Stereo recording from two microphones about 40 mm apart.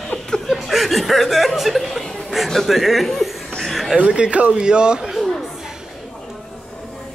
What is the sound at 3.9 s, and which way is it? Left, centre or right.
Speech, right.